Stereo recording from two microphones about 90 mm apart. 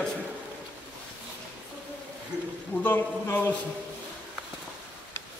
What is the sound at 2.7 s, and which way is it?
Speech, 20° left (ahead or behind).